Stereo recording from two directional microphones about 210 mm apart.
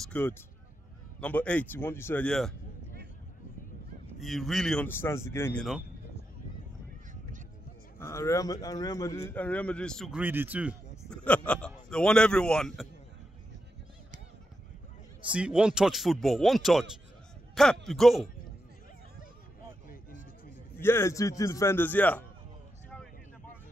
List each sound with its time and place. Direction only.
0.0 s a man's voice: 10° left (ahead or behind)
4.2 s a man's voice: centre (ahead or behind)
8.0 s a man's voice: 15° left (ahead or behind); by 10.8 s 5° right (ahead or behind)
11.1 s speech: 5° left (ahead or behind)
15.3 s a man's voice: 5° right (ahead or behind)
17.8 s a man's voice: centre (ahead or behind)
20.8 s a man's voice: 10° left (ahead or behind)